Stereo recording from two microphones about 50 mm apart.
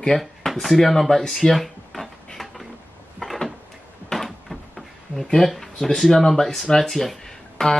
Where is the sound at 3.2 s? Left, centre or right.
Centre.